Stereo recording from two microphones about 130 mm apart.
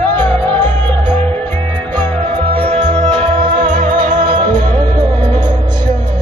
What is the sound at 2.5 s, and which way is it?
Music, 55° right (ahead or behind).